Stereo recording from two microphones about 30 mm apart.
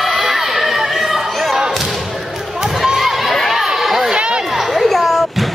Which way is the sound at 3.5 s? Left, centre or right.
Centre.